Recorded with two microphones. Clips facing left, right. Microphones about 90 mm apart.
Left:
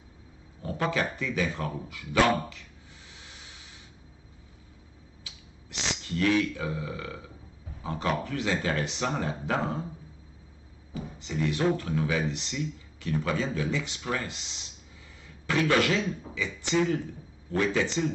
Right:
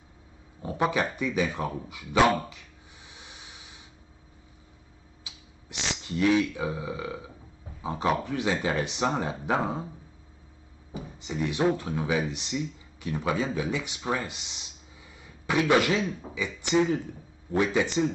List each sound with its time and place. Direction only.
0.6 s speech: 15° right (ahead or behind)
3.1 s vehicle: 20° right (ahead or behind)
5.2 s a sound: 20° right (ahead or behind)
7.8 s speech: 20° right (ahead or behind)
10.9 s speech: 20° right (ahead or behind)